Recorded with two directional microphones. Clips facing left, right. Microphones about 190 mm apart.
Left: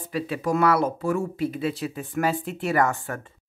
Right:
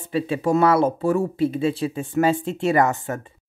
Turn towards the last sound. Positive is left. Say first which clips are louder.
# right 3 dB
turn(degrees=-20)  # may be behind; listen again after turning